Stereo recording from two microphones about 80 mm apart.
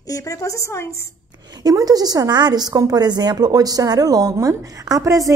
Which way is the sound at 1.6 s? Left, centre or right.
Right.